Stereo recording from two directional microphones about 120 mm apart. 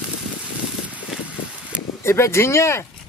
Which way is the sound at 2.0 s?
25° left (ahead or behind).